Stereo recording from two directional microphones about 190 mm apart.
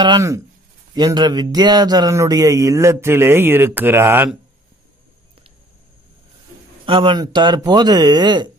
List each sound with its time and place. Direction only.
0.0 s speech: 20° right (ahead or behind)
6.9 s speech: 25° right (ahead or behind)